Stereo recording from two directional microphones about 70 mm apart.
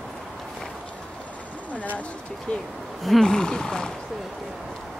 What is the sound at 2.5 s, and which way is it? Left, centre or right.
Speech, centre.